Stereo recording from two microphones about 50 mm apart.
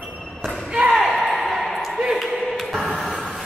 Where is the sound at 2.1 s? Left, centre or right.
Centre.